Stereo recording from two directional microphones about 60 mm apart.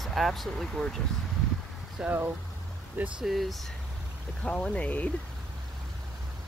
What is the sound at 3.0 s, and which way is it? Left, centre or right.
Speech, right.